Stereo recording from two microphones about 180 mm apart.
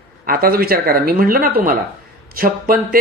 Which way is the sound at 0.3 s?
55° right (ahead or behind).